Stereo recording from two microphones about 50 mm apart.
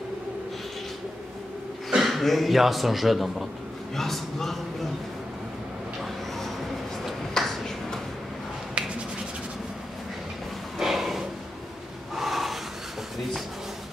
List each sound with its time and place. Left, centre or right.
1.9 s a man's voice: centre
7.3 s finger snapping: centre
8.8 s finger snapping: right
10.8 s snort: centre
12.2 s a sound: centre